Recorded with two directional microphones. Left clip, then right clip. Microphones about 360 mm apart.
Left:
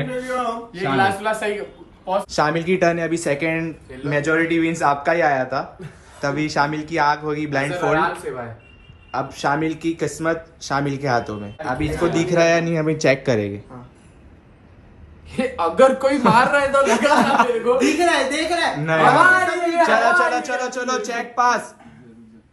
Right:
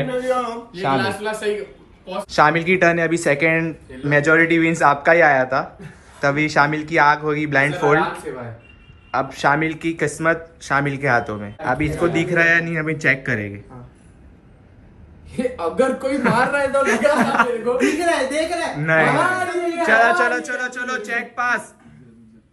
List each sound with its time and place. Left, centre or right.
0.6 s speech: centre
0.9 s speech: centre
15.3 s speech: centre